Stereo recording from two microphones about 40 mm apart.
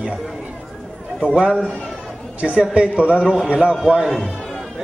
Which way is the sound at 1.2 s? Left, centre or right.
Centre.